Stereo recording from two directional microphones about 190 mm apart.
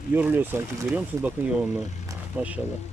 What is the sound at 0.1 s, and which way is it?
Speech, 10° right (ahead or behind).